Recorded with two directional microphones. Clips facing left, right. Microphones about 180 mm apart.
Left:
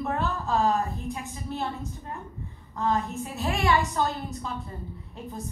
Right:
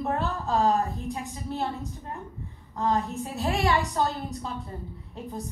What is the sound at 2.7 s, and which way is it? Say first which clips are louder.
A woman's voice: right 1 dB; 35° right (ahead or behind).